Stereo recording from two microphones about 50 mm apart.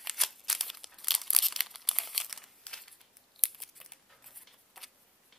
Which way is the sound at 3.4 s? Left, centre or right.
Centre.